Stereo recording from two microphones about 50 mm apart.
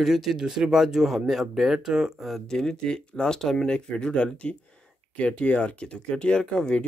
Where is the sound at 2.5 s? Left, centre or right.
Centre.